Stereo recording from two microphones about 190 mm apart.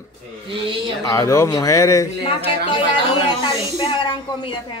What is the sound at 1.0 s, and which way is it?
Speech, 15° left (ahead or behind).